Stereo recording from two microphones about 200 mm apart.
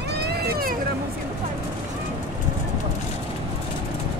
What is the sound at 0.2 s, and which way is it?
Vehicle, 55° right (ahead or behind).